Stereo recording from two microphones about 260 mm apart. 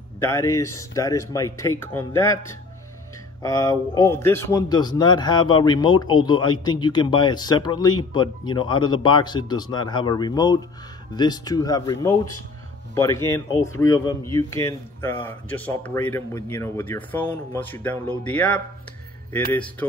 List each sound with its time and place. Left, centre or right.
0.2 s speech: centre
3.4 s speech: centre